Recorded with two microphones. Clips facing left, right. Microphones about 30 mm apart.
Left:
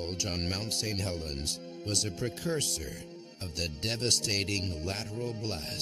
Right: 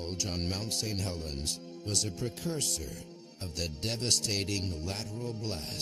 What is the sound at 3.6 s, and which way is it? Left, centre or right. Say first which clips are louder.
Speech: left 2 dB; left.